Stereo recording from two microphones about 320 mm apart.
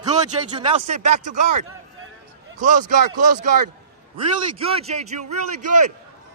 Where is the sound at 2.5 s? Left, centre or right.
Right.